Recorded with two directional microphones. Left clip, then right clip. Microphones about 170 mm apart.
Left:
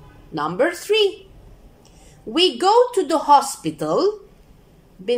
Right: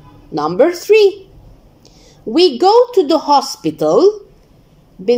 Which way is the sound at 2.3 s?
15° right (ahead or behind).